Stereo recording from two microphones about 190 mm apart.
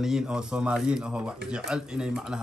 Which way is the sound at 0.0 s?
5° right (ahead or behind).